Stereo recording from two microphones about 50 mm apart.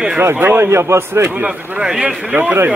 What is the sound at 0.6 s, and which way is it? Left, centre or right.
Speech, right.